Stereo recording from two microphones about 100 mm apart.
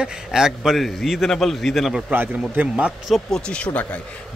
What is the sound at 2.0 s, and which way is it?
Speech, 15° right (ahead or behind).